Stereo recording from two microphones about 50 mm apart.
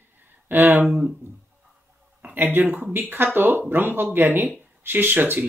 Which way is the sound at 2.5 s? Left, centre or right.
Right.